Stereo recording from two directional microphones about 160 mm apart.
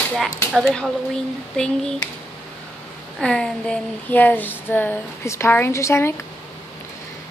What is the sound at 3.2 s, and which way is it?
Speech, 5° left (ahead or behind).